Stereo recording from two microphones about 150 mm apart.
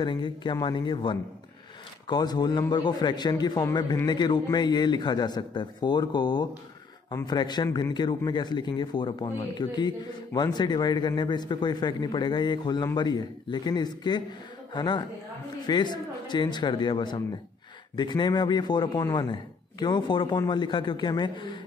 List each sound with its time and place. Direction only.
0.0 s a man's voice: 30° left (ahead or behind)